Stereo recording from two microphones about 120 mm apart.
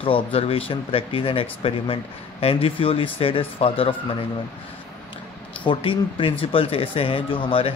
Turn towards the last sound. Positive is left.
turn(degrees=50)  # may be behind; listen again after turning